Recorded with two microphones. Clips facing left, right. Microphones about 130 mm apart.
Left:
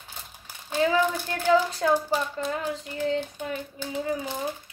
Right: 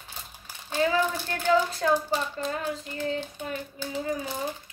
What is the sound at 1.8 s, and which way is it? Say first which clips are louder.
Speech: left 1 dB; 10° left (ahead or behind).